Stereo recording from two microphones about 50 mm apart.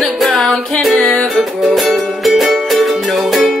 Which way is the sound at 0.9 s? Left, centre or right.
Centre.